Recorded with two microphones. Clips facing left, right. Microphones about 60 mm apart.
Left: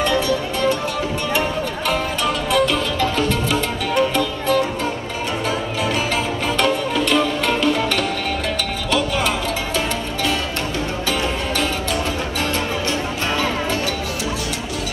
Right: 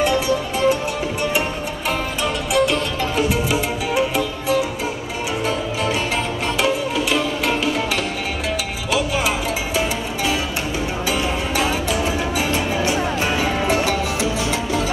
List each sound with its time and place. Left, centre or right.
0.0 s music: centre
1.9 s music: centre
6.6 s music: centre
11.1 s music: centre
13.4 s music: centre